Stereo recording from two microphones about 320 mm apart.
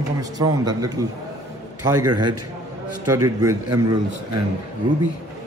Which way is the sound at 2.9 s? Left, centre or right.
Right.